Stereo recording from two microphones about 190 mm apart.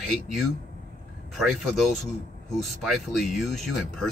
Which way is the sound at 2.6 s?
Centre (ahead or behind).